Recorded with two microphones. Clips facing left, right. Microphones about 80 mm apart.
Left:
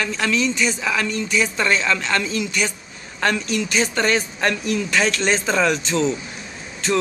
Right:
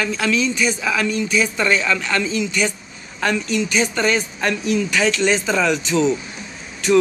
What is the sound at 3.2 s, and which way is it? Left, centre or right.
Speech, left.